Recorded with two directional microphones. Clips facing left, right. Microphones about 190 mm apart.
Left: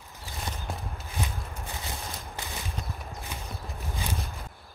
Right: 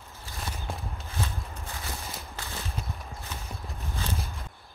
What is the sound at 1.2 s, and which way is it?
Walk, 15° left (ahead or behind).